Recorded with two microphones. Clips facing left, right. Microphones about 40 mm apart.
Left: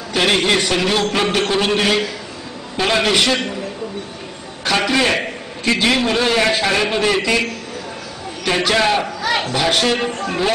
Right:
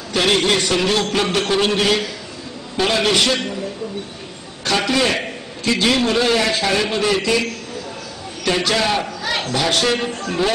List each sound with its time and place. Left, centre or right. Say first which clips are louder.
0.1 s a man's voice: left 1 dB; centre
4.6 s a sound: left 1 dB; centre
5.8 s a man's voice: right 1 dB; centre
8.5 s a man's voice: left 2 dB; left
8.9 s a man's voice: left 3 dB; centre